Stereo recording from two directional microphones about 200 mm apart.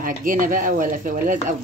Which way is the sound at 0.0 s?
45° right (ahead or behind).